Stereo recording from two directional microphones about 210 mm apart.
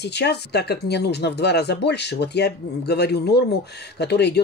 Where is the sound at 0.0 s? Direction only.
50° left (ahead or behind).